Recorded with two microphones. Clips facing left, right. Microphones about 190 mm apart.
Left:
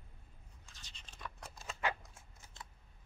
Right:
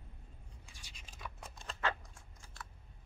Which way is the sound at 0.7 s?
10° right (ahead or behind).